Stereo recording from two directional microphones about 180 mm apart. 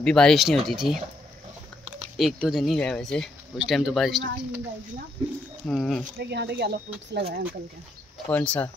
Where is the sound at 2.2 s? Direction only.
Centre (ahead or behind).